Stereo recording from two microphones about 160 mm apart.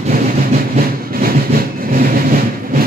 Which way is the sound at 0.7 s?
65° right (ahead or behind).